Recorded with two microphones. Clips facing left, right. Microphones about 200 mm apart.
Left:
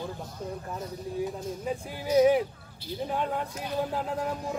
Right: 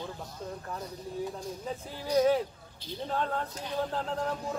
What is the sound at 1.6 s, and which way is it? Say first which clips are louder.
Speech: left 4 dB; 15° left (ahead or behind).